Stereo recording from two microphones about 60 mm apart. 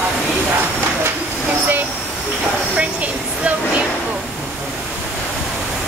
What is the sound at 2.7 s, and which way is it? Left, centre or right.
Speech, right.